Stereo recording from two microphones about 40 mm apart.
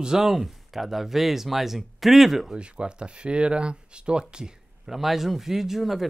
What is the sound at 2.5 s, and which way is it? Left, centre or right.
Speech, right.